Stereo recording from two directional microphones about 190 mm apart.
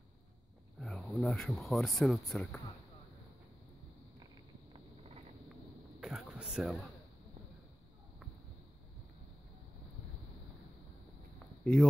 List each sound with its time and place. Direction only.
0.7 s speech: 5° left (ahead or behind)
4.7 s vehicle: 30° right (ahead or behind)
5.9 s a sound: centre (ahead or behind)
11.6 s speech: 5° left (ahead or behind)